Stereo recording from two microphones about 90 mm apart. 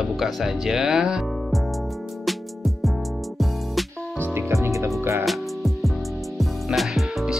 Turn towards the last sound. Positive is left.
turn(degrees=-5)  # may be behind; listen again after turning